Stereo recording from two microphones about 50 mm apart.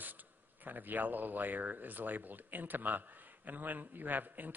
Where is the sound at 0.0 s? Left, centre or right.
Right.